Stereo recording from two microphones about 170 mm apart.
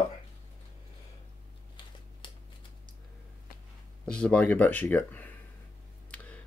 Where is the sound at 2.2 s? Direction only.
30° left (ahead or behind).